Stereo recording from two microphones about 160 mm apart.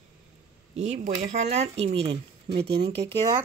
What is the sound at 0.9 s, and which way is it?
Speech, 45° right (ahead or behind).